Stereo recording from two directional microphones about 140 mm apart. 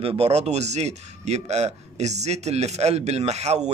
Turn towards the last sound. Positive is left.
turn(degrees=-50)  # may be behind; listen again after turning